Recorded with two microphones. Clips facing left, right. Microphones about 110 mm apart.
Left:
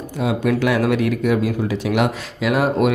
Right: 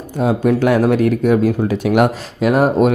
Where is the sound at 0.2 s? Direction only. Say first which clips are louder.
Right 4 dB; 40° right (ahead or behind).